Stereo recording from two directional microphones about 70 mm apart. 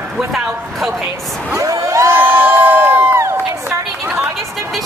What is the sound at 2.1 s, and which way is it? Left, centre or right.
Crowd, right.